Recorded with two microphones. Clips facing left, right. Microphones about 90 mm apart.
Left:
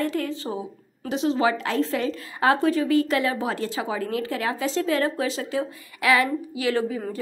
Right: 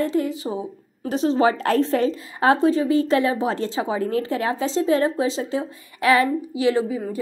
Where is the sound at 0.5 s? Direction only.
35° right (ahead or behind).